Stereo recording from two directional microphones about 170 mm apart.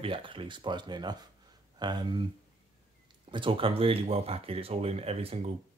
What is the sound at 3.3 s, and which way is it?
Speech, 30° right (ahead or behind).